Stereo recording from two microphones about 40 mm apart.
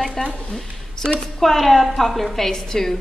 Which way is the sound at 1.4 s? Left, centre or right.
Centre.